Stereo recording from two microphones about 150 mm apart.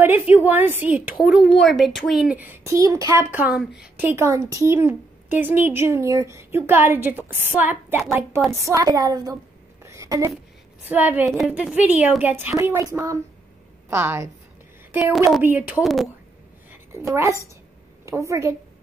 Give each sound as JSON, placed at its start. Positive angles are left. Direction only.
{"t": 0.0, "sound": "a woman's voice", "side_deg": -15}
{"t": 9.8, "sound": "a sound", "side_deg": -20}
{"t": 10.9, "sound": "a woman's voice", "side_deg": -10}
{"t": 11.3, "sound": "a woman's voice", "side_deg": 0}
{"t": 16.9, "sound": "a woman's voice", "side_deg": -20}